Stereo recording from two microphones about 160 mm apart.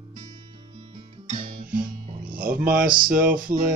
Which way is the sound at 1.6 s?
60° right (ahead or behind).